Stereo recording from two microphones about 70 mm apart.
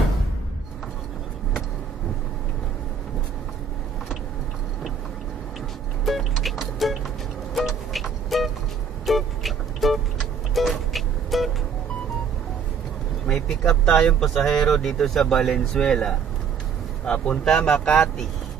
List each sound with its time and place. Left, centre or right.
6.0 s music: centre
9.0 s vehicle: centre
10.5 s music: centre
13.3 s vehicle: centre
14.2 s speech: centre